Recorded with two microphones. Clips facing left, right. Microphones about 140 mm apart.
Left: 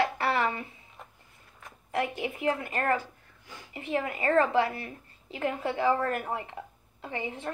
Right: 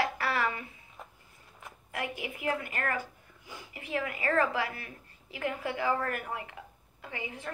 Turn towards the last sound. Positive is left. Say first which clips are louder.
# left 5 dB
turn(degrees=30)  # may be behind; listen again after turning